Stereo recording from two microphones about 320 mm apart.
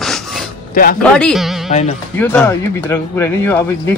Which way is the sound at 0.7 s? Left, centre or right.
Left.